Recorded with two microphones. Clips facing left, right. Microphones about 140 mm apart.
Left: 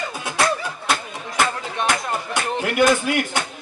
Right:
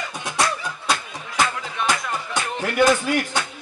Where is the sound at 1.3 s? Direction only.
35° left (ahead or behind).